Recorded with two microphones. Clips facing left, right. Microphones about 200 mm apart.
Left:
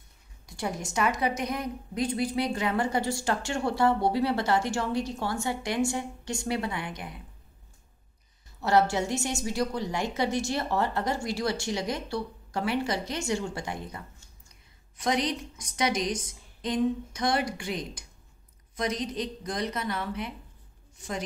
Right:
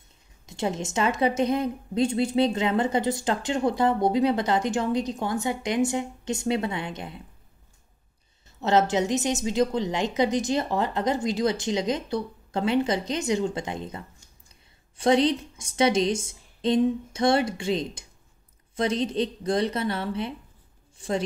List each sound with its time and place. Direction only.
0.5 s a woman's voice: 25° right (ahead or behind)
8.5 s a woman's voice: 20° right (ahead or behind)